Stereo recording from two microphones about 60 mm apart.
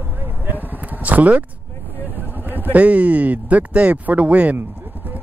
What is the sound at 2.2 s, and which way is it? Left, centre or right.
Speech, right.